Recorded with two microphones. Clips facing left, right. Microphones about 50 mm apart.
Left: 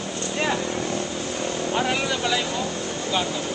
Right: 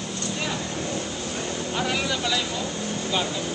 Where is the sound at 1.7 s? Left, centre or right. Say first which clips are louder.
Left 2 dB; centre.